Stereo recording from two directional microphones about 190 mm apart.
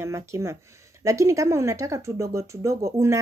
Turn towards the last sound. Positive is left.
turn(degrees=-15)  # may be behind; listen again after turning